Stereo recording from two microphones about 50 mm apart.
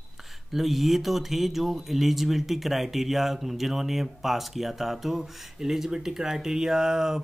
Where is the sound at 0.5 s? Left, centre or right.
Centre.